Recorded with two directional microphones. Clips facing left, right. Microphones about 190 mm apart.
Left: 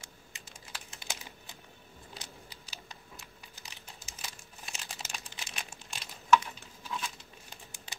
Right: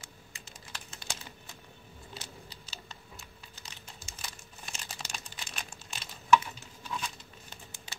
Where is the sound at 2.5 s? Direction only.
15° left (ahead or behind).